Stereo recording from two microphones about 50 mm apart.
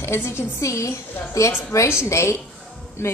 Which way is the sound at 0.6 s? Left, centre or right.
Left.